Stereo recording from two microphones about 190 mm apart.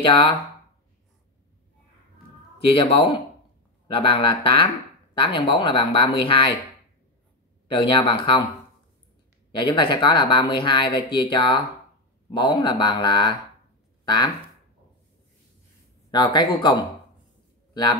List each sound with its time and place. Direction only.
0.0 s speech: 25° left (ahead or behind)
2.6 s speech: 30° left (ahead or behind)
7.6 s speech: 25° left (ahead or behind)
9.6 s speech: 25° left (ahead or behind)
16.1 s speech: 20° left (ahead or behind)